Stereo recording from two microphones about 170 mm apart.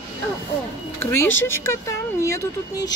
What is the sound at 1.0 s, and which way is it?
Speech, 15° left (ahead or behind).